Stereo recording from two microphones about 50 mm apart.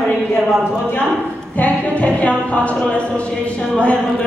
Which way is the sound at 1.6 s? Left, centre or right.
Left.